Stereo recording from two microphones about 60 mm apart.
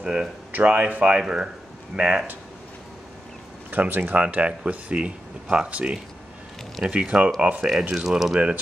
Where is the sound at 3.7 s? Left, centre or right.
Right.